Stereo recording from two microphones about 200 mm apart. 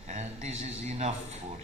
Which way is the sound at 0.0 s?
35° right (ahead or behind).